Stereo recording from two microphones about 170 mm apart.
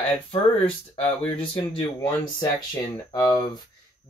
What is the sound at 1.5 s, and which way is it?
Speech, 25° left (ahead or behind).